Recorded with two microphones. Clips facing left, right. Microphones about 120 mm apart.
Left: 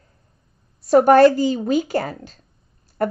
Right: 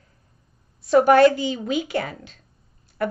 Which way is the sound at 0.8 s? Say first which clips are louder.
Left 3 dB; 40° left (ahead or behind).